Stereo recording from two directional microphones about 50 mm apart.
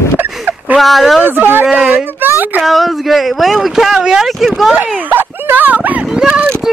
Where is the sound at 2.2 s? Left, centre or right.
Right.